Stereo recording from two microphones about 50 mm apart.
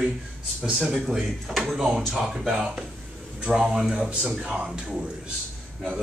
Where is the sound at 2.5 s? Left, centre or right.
Centre.